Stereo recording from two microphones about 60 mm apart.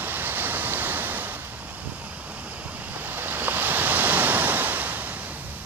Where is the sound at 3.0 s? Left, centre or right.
Right.